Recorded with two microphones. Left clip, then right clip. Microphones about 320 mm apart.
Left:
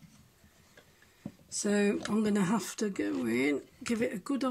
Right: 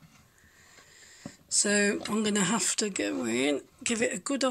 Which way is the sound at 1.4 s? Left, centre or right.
Centre.